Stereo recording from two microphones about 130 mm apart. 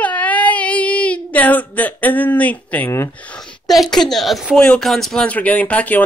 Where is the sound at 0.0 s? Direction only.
10° left (ahead or behind).